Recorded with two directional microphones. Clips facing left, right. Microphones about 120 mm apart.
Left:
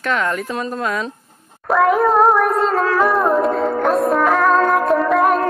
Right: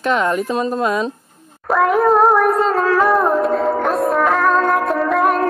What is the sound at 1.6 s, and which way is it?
Music, centre (ahead or behind).